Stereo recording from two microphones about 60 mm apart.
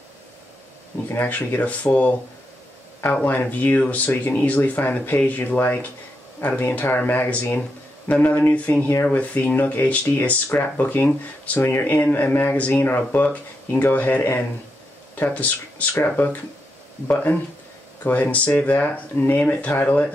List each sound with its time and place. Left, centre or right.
1.0 s speech: left
3.0 s speech: left
4.1 s speech: left
17.1 s speech: left